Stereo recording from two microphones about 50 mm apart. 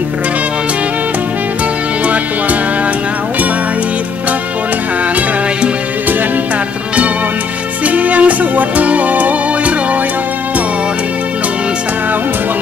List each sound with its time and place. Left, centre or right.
7.8 s music: right